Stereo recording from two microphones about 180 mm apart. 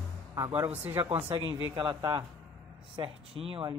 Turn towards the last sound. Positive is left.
turn(degrees=-30)  # may be behind; listen again after turning